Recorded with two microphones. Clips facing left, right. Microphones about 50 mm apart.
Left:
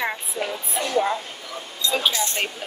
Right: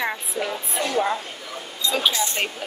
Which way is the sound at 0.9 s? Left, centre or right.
Centre.